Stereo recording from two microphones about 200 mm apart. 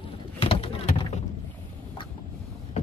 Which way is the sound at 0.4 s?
25° left (ahead or behind).